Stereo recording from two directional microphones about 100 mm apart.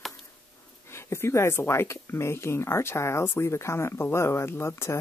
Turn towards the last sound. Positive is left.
turn(degrees=25)  # may be behind; listen again after turning